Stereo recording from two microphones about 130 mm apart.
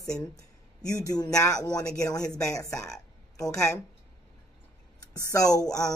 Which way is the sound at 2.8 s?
5° left (ahead or behind).